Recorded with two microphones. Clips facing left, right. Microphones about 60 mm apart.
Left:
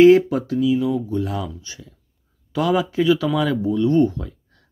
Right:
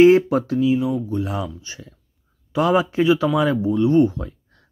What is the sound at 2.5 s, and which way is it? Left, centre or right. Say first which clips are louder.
Speech: right 2 dB; right.